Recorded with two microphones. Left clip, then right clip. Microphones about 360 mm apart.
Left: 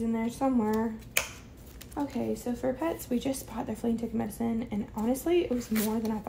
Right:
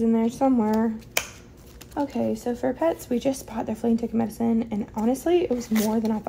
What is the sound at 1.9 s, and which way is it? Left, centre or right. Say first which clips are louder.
Speech: right 6 dB; right.